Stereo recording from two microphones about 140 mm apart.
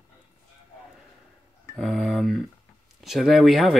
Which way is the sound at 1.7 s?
Centre (ahead or behind).